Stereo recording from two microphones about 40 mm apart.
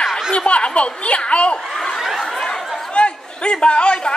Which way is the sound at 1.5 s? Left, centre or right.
Centre.